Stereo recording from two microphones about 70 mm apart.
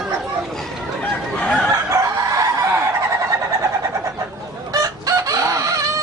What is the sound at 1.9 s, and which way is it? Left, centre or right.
Chicken, right.